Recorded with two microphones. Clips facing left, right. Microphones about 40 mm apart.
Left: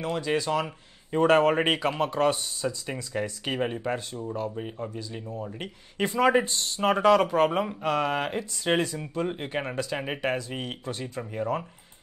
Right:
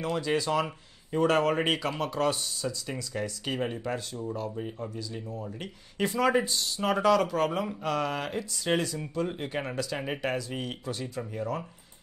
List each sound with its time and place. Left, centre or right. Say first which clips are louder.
0.0 s speech: left 1 dB; centre
1.1 s speech: left 4 dB; left